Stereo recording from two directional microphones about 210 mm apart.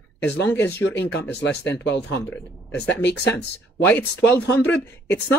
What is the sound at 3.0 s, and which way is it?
Speech, 55° left (ahead or behind).